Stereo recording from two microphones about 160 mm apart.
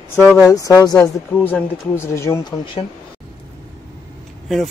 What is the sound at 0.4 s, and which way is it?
Speech, 20° left (ahead or behind).